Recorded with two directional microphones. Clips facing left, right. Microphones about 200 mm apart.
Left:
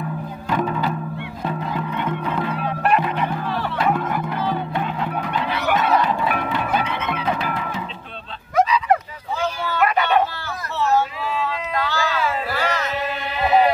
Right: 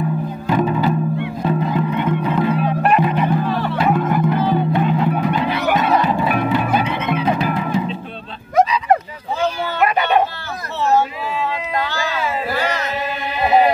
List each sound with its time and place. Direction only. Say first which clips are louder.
0.5 s music: right 5 dB; 10° right (ahead or behind)
4.1 s music: right 7 dB; 20° right (ahead or behind)
4.7 s music: right 7 dB; 5° right (ahead or behind)
8.5 s a sound: right 3 dB; 20° right (ahead or behind)